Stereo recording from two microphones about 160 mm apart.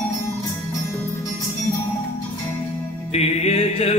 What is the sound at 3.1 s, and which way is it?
Music, 40° left (ahead or behind).